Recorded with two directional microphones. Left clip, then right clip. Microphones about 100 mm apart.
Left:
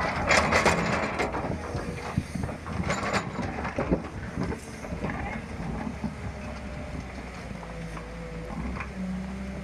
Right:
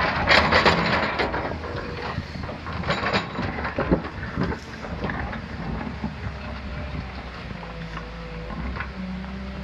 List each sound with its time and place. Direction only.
0.1 s wood: 15° left (ahead or behind)
2.9 s a sound: 20° left (ahead or behind)
4.4 s train: 20° left (ahead or behind)